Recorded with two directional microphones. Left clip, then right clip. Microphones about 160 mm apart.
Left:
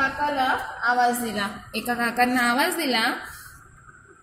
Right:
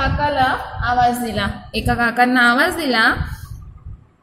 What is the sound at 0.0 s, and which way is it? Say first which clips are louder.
A woman's voice: right 6 dB; centre (ahead or behind).